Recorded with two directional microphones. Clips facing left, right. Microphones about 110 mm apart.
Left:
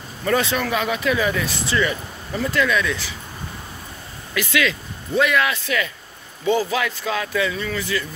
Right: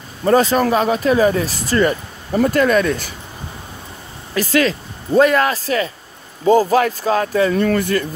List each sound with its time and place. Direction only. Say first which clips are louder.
0.2 s speech: right 7 dB; 40° right (ahead or behind)
4.3 s speech: right 5 dB; 40° right (ahead or behind)
7.5 s speech: right 9 dB; 55° right (ahead or behind)